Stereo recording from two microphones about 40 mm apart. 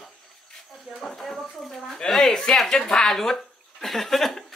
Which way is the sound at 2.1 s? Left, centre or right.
Centre.